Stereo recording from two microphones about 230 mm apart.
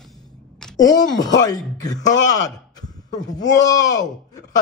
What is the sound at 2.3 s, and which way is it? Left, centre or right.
A man's voice, centre.